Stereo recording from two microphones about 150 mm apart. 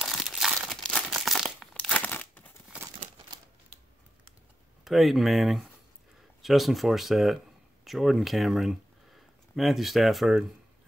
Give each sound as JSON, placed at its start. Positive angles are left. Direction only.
{"t": 0.0, "sound": "crumpling", "side_deg": 0}
{"t": 4.8, "sound": "speech", "side_deg": 0}